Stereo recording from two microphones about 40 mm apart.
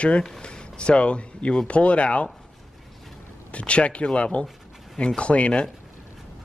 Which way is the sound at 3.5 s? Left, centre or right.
Left.